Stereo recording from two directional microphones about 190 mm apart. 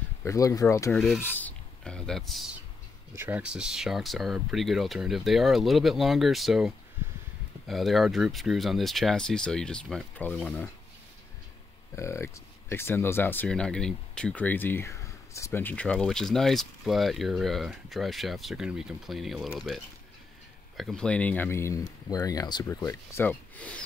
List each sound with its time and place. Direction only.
0.2 s speech: 15° left (ahead or behind)
0.9 s speech: centre (ahead or behind)
3.2 s speech: 10° right (ahead or behind); by 10.7 s 5° left (ahead or behind)
11.9 s speech: 15° left (ahead or behind)
20.7 s speech: centre (ahead or behind)